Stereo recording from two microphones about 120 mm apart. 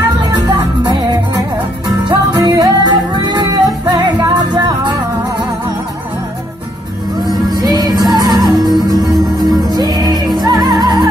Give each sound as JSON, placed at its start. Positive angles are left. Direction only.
{"t": 0.2, "sound": "music", "side_deg": -35}
{"t": 2.0, "sound": "music", "side_deg": -35}
{"t": 7.2, "sound": "music", "side_deg": -35}